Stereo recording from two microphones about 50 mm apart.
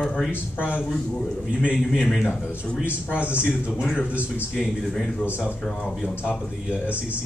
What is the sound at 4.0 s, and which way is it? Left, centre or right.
Speech, left.